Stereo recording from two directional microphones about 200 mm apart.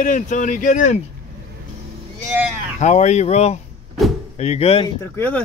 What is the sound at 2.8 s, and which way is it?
Speech, 35° left (ahead or behind).